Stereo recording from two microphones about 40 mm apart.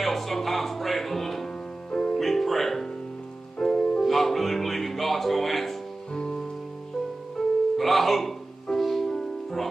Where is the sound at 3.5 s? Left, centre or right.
Centre.